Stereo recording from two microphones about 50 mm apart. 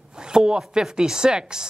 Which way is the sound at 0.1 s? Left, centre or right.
Centre.